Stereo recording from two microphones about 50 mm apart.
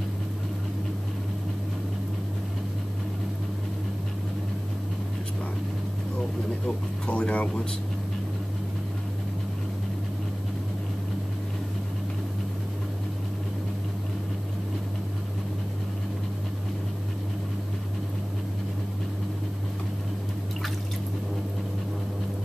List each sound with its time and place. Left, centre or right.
7.1 s speech: left